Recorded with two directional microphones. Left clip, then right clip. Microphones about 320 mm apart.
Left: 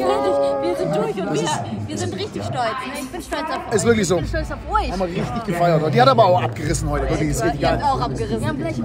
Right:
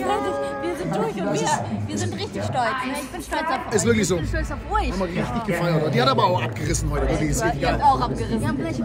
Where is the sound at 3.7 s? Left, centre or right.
Centre.